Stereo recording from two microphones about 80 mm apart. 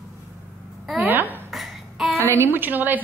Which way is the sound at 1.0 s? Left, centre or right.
Right.